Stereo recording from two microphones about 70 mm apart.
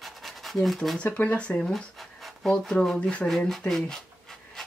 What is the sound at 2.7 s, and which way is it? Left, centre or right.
Speech, centre.